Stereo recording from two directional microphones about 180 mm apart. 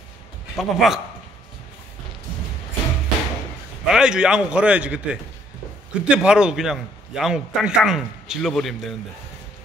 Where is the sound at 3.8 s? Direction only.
5° right (ahead or behind).